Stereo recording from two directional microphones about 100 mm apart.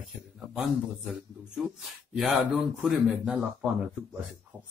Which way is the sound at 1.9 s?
Centre (ahead or behind).